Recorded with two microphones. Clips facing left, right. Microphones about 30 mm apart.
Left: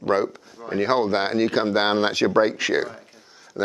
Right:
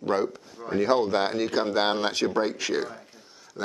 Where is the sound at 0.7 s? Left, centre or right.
Left.